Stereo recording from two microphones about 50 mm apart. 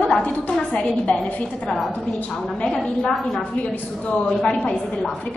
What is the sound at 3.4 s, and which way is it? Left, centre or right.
A woman's voice, left.